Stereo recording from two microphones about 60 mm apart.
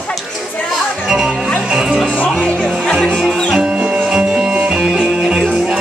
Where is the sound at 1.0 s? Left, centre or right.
Centre.